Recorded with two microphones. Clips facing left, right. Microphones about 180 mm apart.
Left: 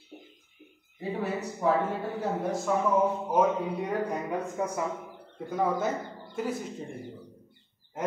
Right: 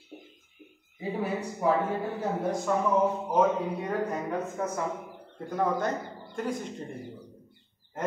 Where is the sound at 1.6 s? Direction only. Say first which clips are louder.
Even; 5° right (ahead or behind).